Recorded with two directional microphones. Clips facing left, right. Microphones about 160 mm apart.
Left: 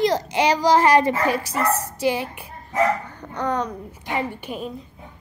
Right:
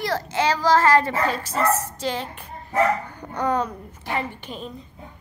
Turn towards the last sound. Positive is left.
turn(degrees=10)  # may be behind; listen again after turning